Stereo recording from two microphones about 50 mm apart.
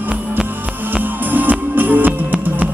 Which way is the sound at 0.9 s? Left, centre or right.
Right.